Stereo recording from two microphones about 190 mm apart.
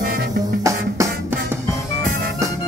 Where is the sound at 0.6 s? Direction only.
15° right (ahead or behind).